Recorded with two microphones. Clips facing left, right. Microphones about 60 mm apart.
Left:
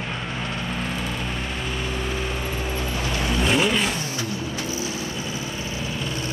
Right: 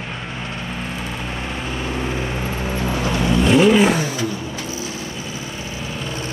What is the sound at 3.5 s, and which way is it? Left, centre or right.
Vehicle, centre.